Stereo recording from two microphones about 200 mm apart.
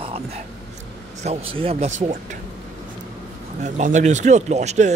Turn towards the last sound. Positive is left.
turn(degrees=-35)  # may be behind; listen again after turning